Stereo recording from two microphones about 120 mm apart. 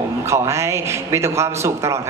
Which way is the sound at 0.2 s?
25° right (ahead or behind).